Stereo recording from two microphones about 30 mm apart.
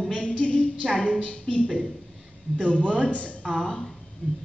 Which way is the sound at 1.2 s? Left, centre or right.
Left.